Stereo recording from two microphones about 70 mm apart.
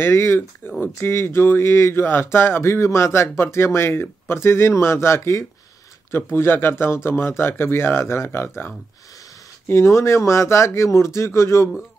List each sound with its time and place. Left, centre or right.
0.0 s speech: left